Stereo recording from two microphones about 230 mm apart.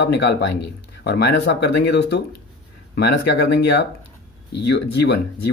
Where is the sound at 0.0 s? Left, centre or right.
Left.